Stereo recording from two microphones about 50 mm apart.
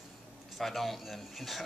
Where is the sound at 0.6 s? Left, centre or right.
Centre.